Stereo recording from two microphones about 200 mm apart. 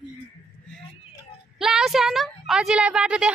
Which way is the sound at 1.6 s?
Centre (ahead or behind).